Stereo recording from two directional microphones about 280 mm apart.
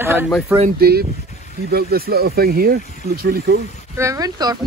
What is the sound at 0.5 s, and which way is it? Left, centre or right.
Speech, right.